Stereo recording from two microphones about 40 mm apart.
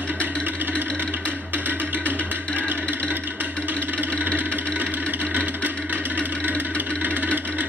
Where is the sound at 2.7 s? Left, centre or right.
Right.